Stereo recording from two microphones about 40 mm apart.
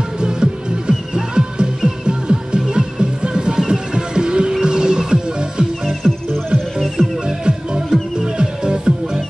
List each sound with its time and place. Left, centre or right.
0.2 s music: right
5.9 s music: centre
7.0 s music: right